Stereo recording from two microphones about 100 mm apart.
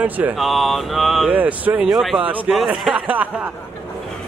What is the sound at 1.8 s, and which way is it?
Speech, centre (ahead or behind).